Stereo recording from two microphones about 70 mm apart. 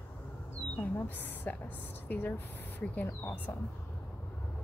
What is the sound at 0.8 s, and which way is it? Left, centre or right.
Speech, left.